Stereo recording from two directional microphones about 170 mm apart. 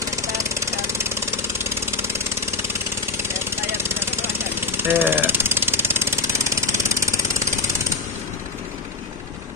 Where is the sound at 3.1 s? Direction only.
15° right (ahead or behind).